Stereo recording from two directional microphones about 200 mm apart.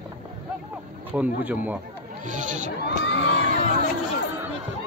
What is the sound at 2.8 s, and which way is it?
Crowd, 60° left (ahead or behind).